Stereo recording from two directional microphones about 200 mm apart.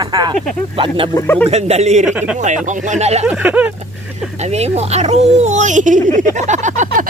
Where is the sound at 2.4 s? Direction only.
40° right (ahead or behind).